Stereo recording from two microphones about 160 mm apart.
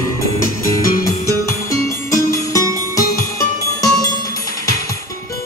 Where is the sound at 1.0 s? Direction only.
20° left (ahead or behind).